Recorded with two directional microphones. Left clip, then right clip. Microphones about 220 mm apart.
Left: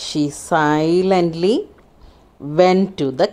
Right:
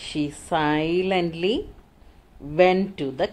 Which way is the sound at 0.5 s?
30° left (ahead or behind).